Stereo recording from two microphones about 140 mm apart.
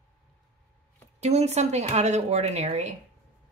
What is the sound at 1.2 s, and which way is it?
A woman's voice, 50° right (ahead or behind).